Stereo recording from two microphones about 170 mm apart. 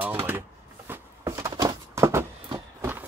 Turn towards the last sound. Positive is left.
turn(degrees=-15)  # may be behind; listen again after turning